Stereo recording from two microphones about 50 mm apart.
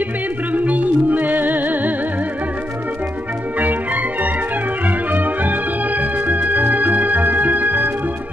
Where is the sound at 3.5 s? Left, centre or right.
Right.